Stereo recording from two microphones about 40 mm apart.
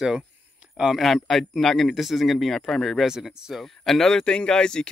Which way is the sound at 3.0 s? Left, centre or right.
Centre.